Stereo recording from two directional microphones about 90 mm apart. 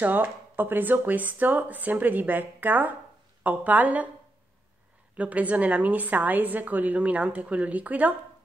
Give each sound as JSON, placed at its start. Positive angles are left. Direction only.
{"t": 0.0, "sound": "a woman's voice", "side_deg": -20}
{"t": 5.1, "sound": "a woman's voice", "side_deg": -15}